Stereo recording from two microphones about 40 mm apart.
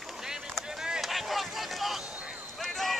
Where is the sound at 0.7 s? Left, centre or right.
Centre.